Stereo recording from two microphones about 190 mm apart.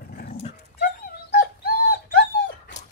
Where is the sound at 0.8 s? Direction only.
50° left (ahead or behind).